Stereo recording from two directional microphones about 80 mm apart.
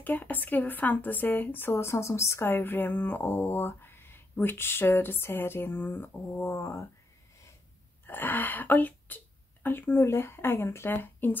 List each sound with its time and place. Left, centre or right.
0.0 s speech: left
8.1 s speech: left